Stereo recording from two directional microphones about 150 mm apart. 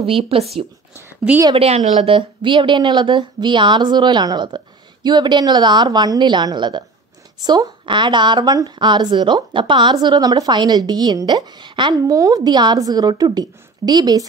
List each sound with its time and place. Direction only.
0.0 s speech: 40° right (ahead or behind)
1.3 s a woman's voice: 5° right (ahead or behind)
1.6 s speech: 45° right (ahead or behind); by 14.2 s 25° right (ahead or behind)